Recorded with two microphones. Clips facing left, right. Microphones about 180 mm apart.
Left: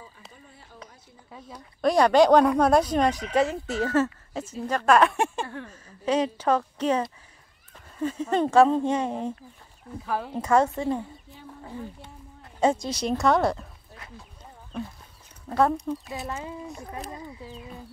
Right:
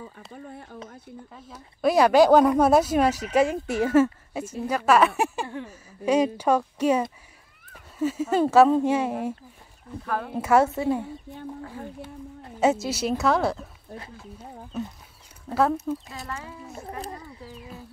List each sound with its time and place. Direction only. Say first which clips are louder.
0.3 s speech: right 11 dB; 60° right (ahead or behind)
1.3 s speech: left 1 dB; 5° right (ahead or behind)
10.0 s speech: even; 10° left (ahead or behind)
10.3 s speech: right 2 dB; 5° right (ahead or behind)
12.5 s speech: right 1 dB; 5° right (ahead or behind)
14.1 s a sound: right 6 dB; 5° right (ahead or behind)
15.9 s speech: right 1 dB; centre (ahead or behind)
16.3 s speech: left 1 dB; 20° left (ahead or behind)